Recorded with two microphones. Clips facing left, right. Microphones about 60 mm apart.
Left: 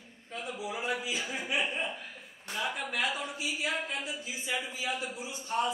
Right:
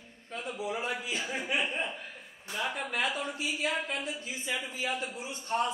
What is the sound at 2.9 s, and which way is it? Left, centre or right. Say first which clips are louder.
A man's voice: right 1 dB; right.